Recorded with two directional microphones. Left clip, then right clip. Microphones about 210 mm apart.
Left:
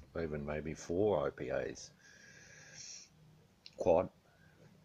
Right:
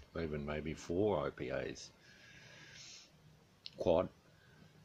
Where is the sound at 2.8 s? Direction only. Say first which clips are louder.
Left 6 dB; 30° right (ahead or behind).